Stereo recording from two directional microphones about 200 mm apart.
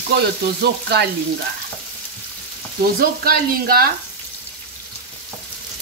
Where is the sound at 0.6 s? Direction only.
55° right (ahead or behind).